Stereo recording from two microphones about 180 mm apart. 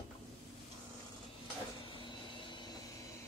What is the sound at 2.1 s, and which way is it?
Vehicle, 25° left (ahead or behind).